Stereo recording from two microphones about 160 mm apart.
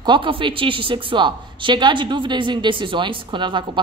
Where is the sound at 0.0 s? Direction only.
30° right (ahead or behind).